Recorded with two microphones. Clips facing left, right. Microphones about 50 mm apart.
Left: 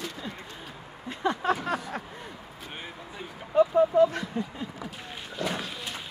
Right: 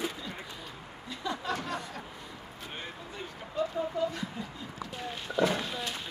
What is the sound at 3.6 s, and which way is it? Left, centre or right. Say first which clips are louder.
Speech: left 11 dB; left.